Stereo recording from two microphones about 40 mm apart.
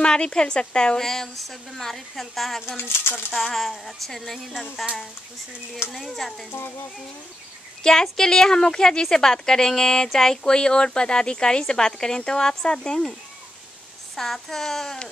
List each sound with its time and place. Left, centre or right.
0.0 s a woman's voice: left; by 2.6 s centre
2.8 s speech: left
3.3 s a woman's voice: centre
5.9 s speech: centre
7.8 s speech: centre
14.1 s speech: centre